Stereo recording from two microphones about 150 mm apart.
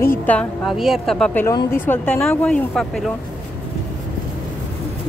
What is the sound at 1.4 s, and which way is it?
Speech, 15° left (ahead or behind).